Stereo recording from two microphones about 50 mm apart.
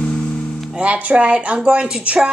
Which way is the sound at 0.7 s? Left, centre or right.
Right.